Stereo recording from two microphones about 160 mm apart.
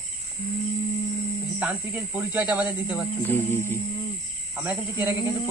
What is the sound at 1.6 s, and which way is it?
Speech, 10° right (ahead or behind).